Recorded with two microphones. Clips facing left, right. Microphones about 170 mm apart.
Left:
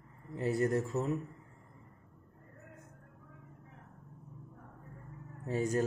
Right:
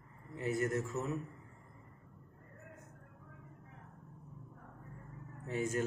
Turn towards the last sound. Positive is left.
turn(degrees=35)  # may be behind; listen again after turning